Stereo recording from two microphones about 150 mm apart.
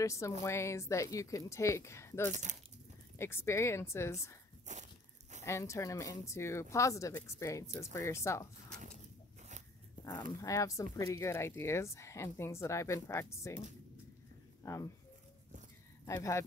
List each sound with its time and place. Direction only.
0.0 s a woman's voice: 20° left (ahead or behind)
2.3 s speech: 50° right (ahead or behind)
3.2 s speech: 15° left (ahead or behind)
4.7 s crunch: 55° right (ahead or behind)
5.4 s speech: 20° left (ahead or behind)
10.4 s speech: 20° left (ahead or behind)
14.6 s speech: 20° left (ahead or behind)
16.1 s speech: 20° left (ahead or behind)